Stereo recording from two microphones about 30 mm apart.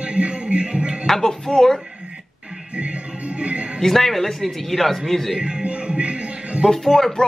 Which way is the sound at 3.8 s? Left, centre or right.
Centre.